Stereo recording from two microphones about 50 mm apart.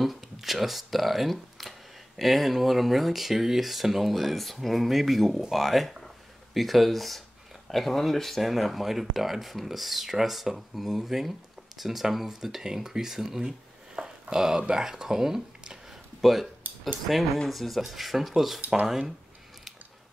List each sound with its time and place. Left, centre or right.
0.0 s speech: centre
16.6 s cutlery: right
17.5 s speech: centre